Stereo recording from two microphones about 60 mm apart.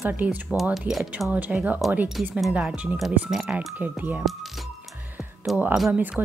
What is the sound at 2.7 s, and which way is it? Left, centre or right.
Speech, right.